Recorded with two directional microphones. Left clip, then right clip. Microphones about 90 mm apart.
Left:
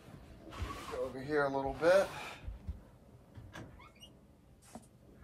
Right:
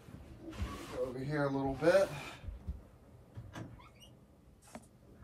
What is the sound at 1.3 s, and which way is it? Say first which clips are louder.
Speech: left 4 dB; 45° left (ahead or behind).